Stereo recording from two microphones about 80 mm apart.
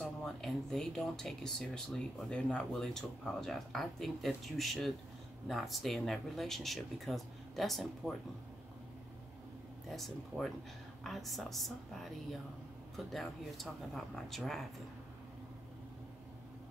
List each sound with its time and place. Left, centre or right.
0.0 s speech: centre
9.8 s speech: centre